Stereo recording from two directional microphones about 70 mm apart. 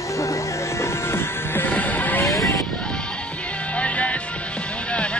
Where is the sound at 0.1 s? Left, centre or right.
Left.